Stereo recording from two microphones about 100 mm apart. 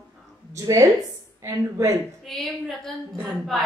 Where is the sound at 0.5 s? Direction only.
35° right (ahead or behind).